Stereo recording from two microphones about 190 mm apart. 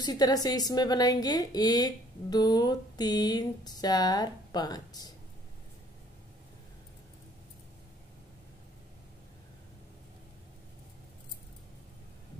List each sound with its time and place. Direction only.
0.0 s a woman's voice: 20° left (ahead or behind)